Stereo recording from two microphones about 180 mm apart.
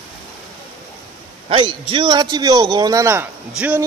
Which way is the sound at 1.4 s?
30° right (ahead or behind).